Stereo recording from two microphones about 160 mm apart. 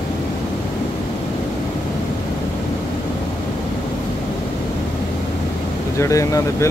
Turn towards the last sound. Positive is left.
turn(degrees=20)  # may be behind; listen again after turning